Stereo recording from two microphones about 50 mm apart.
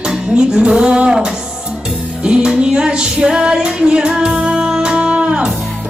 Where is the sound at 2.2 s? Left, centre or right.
Centre.